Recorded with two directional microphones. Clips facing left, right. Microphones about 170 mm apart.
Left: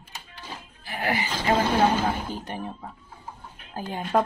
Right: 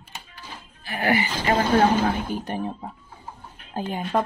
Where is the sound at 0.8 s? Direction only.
70° right (ahead or behind).